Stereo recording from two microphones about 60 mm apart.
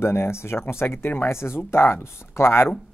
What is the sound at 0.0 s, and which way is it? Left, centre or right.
Speech, left.